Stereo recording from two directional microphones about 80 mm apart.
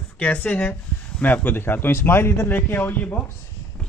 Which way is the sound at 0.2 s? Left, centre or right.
Centre.